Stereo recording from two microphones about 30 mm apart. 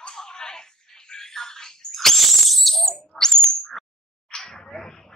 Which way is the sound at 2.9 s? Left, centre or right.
Centre.